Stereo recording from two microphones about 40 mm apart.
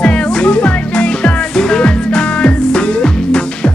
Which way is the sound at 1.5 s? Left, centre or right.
Centre.